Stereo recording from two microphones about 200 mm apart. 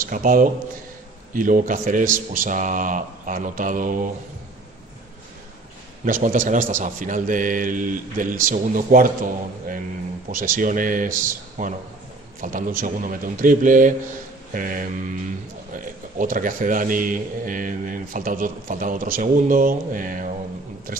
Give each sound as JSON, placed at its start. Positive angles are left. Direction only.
{"t": 0.0, "sound": "a man's voice", "side_deg": -40}
{"t": 6.0, "sound": "a man's voice", "side_deg": -40}
{"t": 16.2, "sound": "a man's voice", "side_deg": -40}